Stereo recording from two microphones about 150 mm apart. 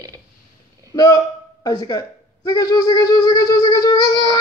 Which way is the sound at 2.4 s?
25° left (ahead or behind).